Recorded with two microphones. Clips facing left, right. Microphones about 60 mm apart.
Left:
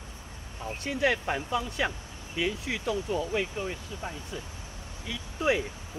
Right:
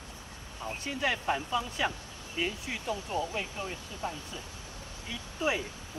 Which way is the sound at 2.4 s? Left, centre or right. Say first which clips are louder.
Left 4 dB; left.